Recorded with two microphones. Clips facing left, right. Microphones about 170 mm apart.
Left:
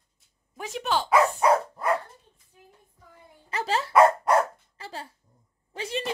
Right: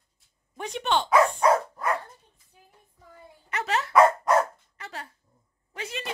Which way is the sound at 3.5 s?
30° left (ahead or behind).